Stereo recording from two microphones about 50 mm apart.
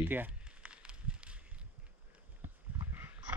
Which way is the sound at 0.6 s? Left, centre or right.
Right.